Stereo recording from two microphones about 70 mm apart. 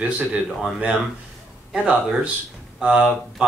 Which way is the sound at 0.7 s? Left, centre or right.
Centre.